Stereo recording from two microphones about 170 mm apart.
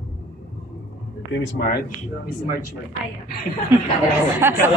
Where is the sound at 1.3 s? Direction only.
90° left; by 1.8 s 70° left (ahead or behind).